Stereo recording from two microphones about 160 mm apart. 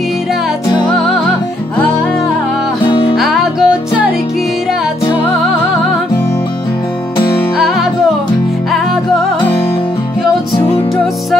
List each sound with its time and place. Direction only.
2.9 s music: 30° left (ahead or behind)
3.2 s music: centre (ahead or behind)
7.5 s music: centre (ahead or behind)